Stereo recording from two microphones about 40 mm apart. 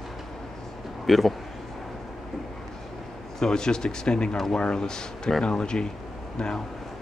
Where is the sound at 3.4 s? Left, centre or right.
Centre.